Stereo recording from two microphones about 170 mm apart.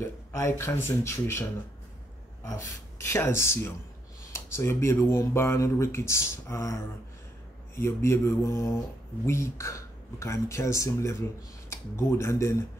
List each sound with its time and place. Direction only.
0.3 s speech: 15° left (ahead or behind)